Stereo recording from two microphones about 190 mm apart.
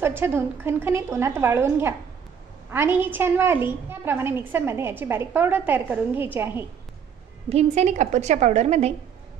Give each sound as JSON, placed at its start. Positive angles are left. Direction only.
{"t": 0.0, "sound": "a woman's voice", "side_deg": -10}
{"t": 7.4, "sound": "a woman's voice", "side_deg": -35}